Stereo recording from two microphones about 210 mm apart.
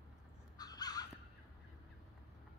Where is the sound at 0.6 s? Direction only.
20° left (ahead or behind).